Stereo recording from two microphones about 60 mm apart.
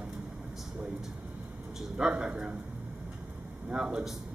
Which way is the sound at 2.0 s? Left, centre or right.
Centre.